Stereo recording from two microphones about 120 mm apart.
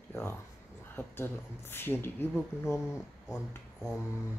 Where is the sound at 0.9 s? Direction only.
20° left (ahead or behind).